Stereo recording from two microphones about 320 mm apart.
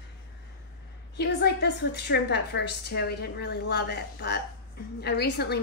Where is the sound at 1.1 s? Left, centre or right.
Left.